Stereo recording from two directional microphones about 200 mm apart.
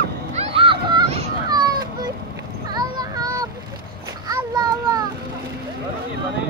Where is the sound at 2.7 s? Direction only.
20° right (ahead or behind).